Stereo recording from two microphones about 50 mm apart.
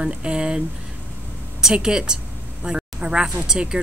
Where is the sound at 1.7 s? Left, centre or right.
Centre.